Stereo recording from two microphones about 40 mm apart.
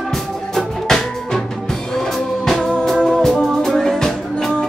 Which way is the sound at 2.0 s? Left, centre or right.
Centre.